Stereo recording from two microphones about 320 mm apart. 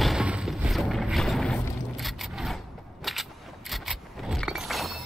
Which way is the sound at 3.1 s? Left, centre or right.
Centre.